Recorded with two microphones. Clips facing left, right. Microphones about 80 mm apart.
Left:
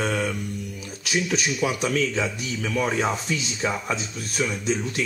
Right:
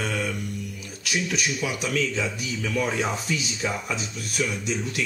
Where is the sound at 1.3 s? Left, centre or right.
Left.